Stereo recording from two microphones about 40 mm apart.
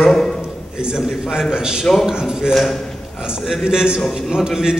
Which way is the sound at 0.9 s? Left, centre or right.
Centre.